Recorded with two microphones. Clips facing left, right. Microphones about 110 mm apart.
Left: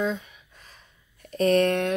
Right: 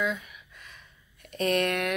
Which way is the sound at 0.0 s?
30° left (ahead or behind).